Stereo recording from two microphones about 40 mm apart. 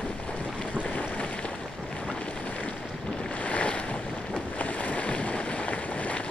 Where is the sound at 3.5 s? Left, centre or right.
Left.